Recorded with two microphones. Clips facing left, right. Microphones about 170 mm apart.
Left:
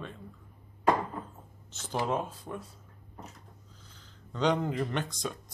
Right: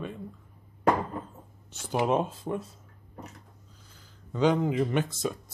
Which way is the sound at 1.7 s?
10° right (ahead or behind).